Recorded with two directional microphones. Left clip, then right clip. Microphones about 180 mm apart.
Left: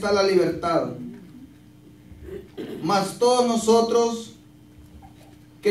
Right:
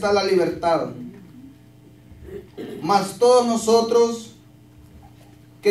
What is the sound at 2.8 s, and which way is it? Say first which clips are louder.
A man's voice: right 4 dB; 40° right (ahead or behind).